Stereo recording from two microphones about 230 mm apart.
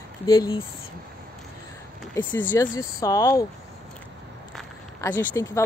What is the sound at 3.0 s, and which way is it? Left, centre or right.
Speech, centre.